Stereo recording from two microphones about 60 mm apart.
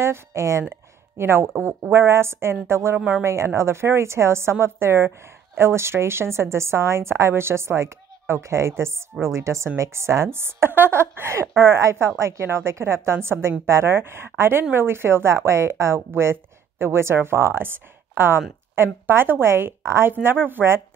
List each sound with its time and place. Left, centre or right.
0.0 s a woman's voice: right
20.1 s a woman's voice: right